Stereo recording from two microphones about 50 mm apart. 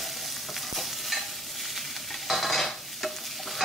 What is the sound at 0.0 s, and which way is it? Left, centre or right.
Stir, centre.